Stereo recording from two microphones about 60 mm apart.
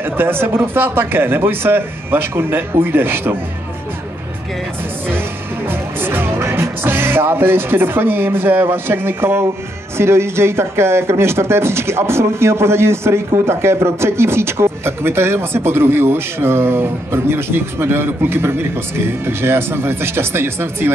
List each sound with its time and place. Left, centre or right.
0.0 s speech: right
5.7 s music: right
9.9 s speech: right